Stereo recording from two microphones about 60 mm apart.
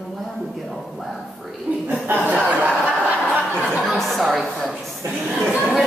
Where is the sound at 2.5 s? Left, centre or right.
Right.